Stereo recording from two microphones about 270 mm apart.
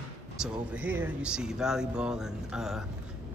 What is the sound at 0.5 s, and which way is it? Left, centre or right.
Speech, centre.